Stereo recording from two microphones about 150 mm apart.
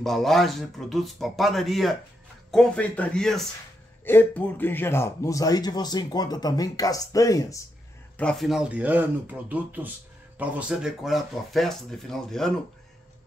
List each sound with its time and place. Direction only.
0.0 s speech: centre (ahead or behind)
4.0 s speech: 15° left (ahead or behind)
8.2 s speech: 5° left (ahead or behind)